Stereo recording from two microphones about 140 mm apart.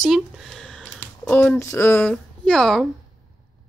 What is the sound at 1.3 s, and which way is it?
Speech, 15° left (ahead or behind).